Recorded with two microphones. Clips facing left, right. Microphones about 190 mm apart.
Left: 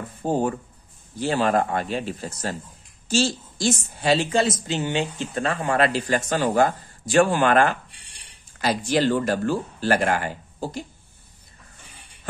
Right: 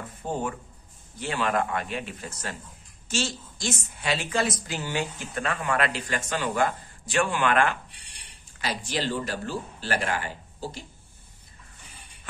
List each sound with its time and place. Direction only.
0.2 s a woman's voice: 35° left (ahead or behind)